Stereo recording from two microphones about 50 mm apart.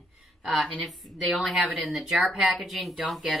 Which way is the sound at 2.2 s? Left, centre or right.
Centre.